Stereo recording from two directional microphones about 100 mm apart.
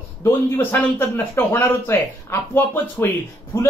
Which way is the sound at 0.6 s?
20° left (ahead or behind).